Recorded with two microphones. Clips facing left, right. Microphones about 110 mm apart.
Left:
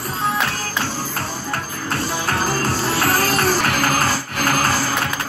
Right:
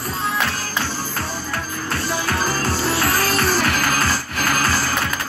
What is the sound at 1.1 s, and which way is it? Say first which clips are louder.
Music: left 1 dB; 50° left (ahead or behind).